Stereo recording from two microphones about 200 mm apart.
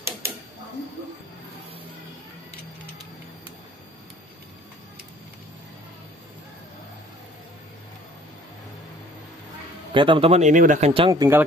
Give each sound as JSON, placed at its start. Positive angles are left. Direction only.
{"t": 9.9, "sound": "speech", "side_deg": -25}
{"t": 10.9, "sound": "speech", "side_deg": -20}